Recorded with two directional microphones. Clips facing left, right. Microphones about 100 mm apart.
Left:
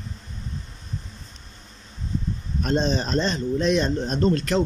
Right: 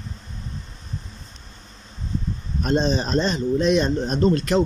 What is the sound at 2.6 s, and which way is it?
Speech, 15° right (ahead or behind).